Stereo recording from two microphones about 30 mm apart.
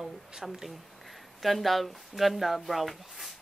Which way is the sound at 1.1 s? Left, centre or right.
Centre.